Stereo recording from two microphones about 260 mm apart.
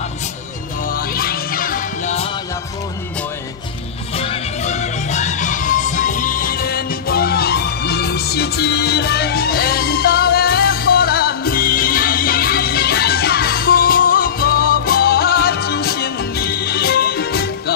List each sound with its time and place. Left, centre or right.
0.8 s music: left
4.1 s music: left